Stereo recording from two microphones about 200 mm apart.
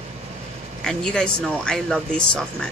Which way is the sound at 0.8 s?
5° left (ahead or behind).